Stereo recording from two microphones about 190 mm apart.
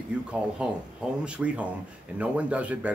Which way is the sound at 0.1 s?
5° right (ahead or behind).